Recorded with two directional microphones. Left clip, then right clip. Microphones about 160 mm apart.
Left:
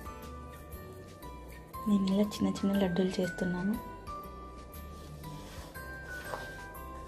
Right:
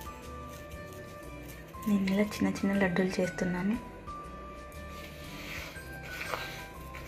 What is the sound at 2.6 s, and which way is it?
A woman's voice, centre (ahead or behind).